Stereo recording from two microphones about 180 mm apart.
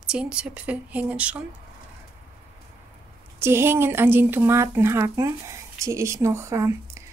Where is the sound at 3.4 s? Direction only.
15° right (ahead or behind).